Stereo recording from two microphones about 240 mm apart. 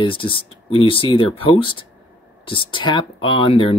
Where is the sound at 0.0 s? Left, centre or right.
Left.